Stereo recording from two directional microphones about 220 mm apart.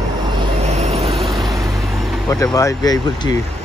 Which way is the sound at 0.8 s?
30° right (ahead or behind).